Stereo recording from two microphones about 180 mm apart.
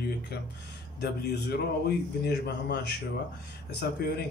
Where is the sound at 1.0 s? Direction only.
65° left (ahead or behind).